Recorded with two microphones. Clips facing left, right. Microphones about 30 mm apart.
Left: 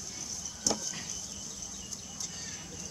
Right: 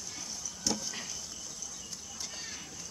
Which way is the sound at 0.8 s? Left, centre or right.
Centre.